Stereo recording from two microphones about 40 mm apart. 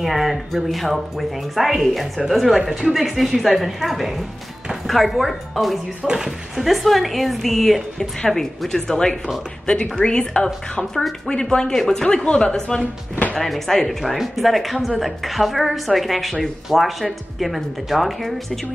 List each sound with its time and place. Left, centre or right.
0.0 s a woman's voice: centre
1.6 s a woman's voice: centre
2.0 s a woman's voice: centre
13.4 s a woman's voice: centre